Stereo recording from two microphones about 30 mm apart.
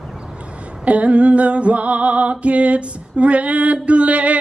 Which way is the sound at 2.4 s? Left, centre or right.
Right.